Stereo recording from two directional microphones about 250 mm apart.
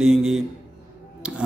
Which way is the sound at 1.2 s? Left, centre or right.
Centre.